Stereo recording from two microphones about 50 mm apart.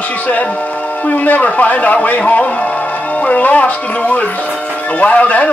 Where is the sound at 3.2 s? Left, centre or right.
Left.